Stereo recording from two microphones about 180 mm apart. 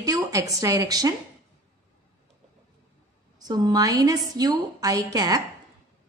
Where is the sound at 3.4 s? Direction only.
20° right (ahead or behind).